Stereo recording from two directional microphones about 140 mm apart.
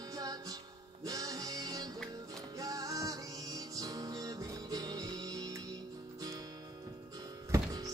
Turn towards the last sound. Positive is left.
turn(degrees=-25)  # may be behind; listen again after turning